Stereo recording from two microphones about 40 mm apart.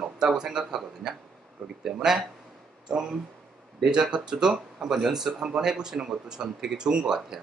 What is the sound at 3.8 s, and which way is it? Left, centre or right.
Speech, right.